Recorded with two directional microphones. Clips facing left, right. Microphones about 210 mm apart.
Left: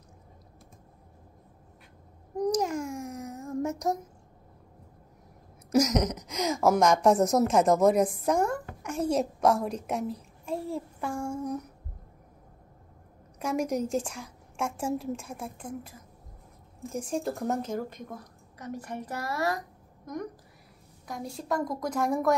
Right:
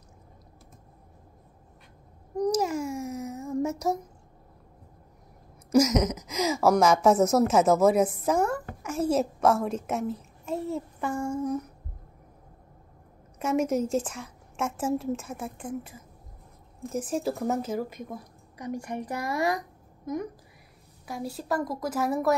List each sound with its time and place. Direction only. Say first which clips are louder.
2.3 s babbling: right 1 dB; centre (ahead or behind)
5.7 s a woman's voice: right 3 dB; 5° right (ahead or behind)
13.4 s a woman's voice: right 3 dB; 5° right (ahead or behind)